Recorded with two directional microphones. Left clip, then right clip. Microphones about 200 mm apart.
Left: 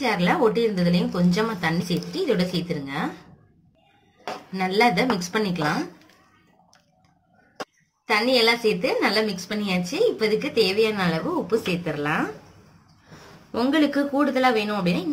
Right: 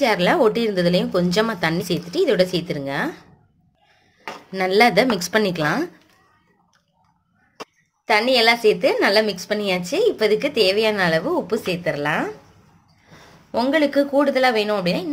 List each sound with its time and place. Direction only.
0.0 s a woman's voice: 50° right (ahead or behind)
4.5 s a woman's voice: 50° right (ahead or behind)
8.0 s a woman's voice: 45° right (ahead or behind)
13.5 s a woman's voice: 35° right (ahead or behind)